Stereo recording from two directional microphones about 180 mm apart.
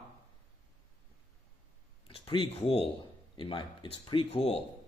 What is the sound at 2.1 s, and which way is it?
Speech, 30° left (ahead or behind).